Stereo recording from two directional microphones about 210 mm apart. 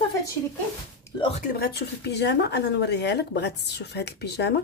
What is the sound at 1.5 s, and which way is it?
Speech, 45° left (ahead or behind).